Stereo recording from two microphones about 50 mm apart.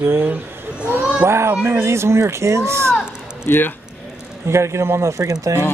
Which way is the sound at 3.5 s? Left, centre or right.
Left.